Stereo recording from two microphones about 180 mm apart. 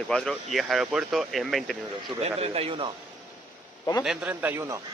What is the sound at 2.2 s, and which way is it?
Speech, 35° right (ahead or behind).